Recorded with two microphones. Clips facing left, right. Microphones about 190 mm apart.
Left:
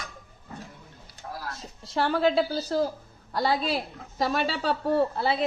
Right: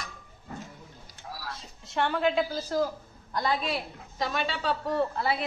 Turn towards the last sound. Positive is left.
turn(degrees=35)  # may be behind; listen again after turning